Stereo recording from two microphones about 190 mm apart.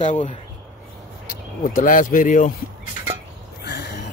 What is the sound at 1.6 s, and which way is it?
Speech, 45° left (ahead or behind).